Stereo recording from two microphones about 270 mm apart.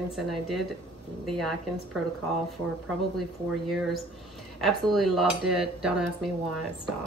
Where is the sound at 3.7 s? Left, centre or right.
Centre.